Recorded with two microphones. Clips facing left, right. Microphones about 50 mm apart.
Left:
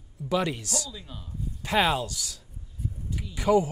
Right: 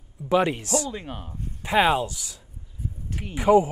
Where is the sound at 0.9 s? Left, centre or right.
Right.